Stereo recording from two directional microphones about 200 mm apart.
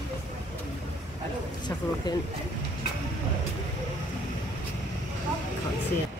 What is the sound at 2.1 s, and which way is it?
Speech, 20° left (ahead or behind).